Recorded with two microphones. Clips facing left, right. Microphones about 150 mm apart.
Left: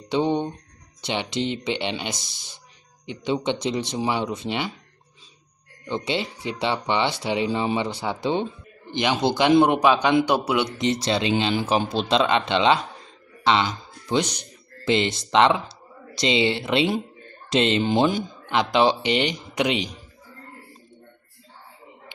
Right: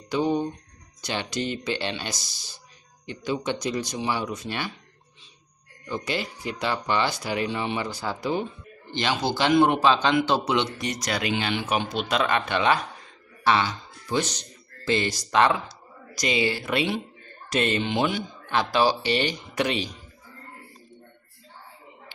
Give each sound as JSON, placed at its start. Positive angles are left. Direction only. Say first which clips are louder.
{"t": 0.1, "sound": "a sound", "louder": "left 2 dB", "side_deg": 25}
{"t": 1.0, "sound": "speech", "louder": "left 3 dB", "side_deg": 20}
{"t": 5.9, "sound": "speech", "louder": "left 3 dB", "side_deg": 25}
{"t": 10.8, "sound": "speech", "louder": "left 6 dB", "side_deg": 25}
{"t": 12.2, "sound": "speech", "louder": "left 3 dB", "side_deg": 20}
{"t": 17.8, "sound": "speech", "louder": "left 5 dB", "side_deg": 35}
{"t": 18.5, "sound": "speech", "louder": "left 3 dB", "side_deg": 20}